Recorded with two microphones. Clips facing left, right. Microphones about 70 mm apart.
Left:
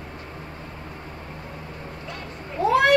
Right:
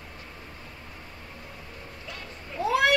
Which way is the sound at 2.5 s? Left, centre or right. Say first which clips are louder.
Left 5 dB; left.